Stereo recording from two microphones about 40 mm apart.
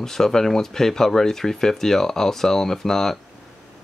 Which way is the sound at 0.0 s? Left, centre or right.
Centre.